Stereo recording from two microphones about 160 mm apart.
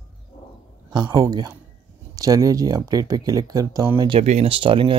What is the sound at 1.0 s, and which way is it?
Speech, 20° right (ahead or behind).